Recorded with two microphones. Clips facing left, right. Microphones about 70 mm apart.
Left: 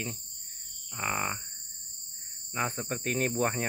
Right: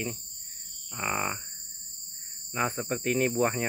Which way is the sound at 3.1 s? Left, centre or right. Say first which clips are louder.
Right 4 dB; left.